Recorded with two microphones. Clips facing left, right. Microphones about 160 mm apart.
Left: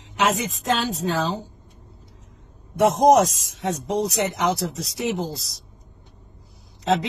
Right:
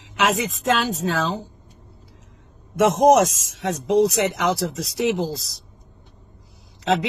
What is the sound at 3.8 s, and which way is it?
Speech, centre (ahead or behind).